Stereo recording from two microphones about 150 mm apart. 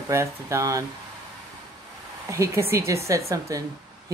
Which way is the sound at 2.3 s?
20° right (ahead or behind).